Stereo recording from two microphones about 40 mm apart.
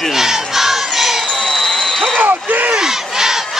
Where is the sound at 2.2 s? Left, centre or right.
Right.